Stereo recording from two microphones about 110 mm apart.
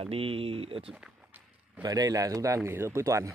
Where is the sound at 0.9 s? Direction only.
15° right (ahead or behind).